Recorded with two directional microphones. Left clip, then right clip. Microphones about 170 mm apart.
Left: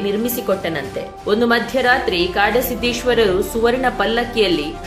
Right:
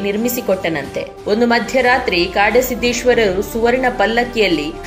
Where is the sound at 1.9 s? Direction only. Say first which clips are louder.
Even; 45° left (ahead or behind).